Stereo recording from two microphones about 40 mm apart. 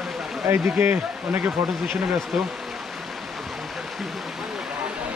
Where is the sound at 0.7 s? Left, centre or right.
Right.